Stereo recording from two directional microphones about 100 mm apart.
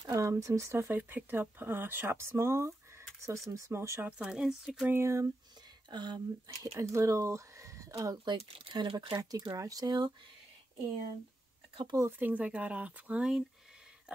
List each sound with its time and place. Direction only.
0.1 s speech: 30° right (ahead or behind)
4.2 s speech: 5° right (ahead or behind)
4.8 s speech: 25° right (ahead or behind)
5.9 s speech: 45° right (ahead or behind)
8.4 s speech: 70° right (ahead or behind)
8.7 s speech: 50° right (ahead or behind)
12.0 s speech: 20° right (ahead or behind)